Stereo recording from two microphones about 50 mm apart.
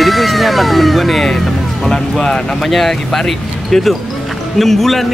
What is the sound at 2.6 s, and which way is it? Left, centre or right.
Speech, centre.